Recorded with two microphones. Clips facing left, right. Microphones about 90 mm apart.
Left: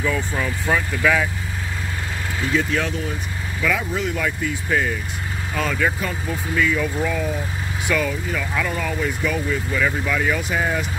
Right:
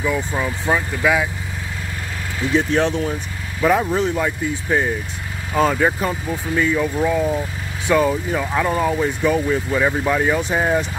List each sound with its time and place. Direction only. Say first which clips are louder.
0.0 s speech: right 2 dB; 15° right (ahead or behind)
2.5 s speech: right 5 dB; 30° right (ahead or behind)
5.5 s speech: right 6 dB; 35° right (ahead or behind)